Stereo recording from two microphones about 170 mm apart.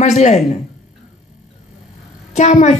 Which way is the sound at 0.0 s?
45° left (ahead or behind).